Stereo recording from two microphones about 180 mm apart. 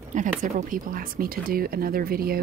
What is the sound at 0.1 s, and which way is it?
Speech, 45° right (ahead or behind).